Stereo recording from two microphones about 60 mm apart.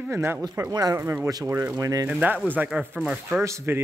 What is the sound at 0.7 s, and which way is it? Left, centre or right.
Speech, right.